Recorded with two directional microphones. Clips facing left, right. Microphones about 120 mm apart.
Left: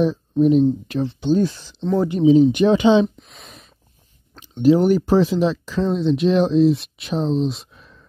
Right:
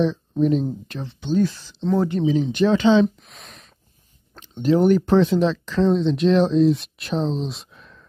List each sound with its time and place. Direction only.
0.0 s speech: 10° left (ahead or behind)
1.0 s speech: 30° left (ahead or behind)
1.5 s speech: 20° left (ahead or behind)
1.8 s speech: 5° left (ahead or behind)
2.1 s speech: 15° left (ahead or behind)
3.2 s a sound: centre (ahead or behind)
4.4 s speech: 10° left (ahead or behind)